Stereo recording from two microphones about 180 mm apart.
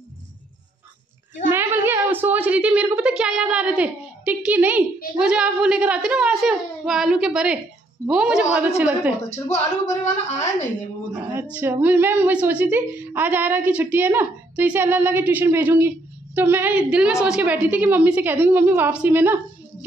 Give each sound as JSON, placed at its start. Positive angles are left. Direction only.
{"t": 1.5, "sound": "a woman's voice", "side_deg": -10}
{"t": 9.3, "sound": "a woman's voice", "side_deg": 40}
{"t": 11.5, "sound": "a woman's voice", "side_deg": -10}